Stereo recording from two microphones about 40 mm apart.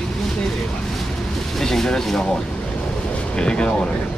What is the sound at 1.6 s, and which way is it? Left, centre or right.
Speech, centre.